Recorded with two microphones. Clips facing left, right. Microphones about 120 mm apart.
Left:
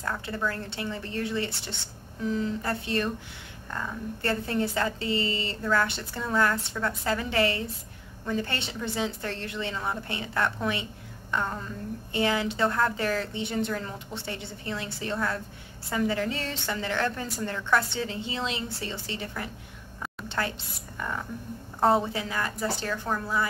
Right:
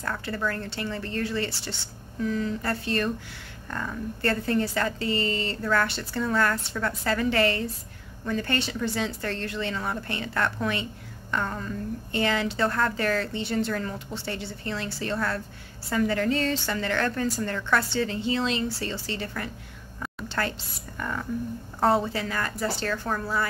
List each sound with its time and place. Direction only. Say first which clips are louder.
0.0 s a woman's voice: right 1 dB; 15° left (ahead or behind)
20.2 s a sound: right 1 dB; 15° left (ahead or behind)
21.0 s a woman's voice: right 1 dB; 10° left (ahead or behind)
21.7 s a woman's voice: even; centre (ahead or behind)
22.1 s a woman's voice: right 1 dB; 15° left (ahead or behind)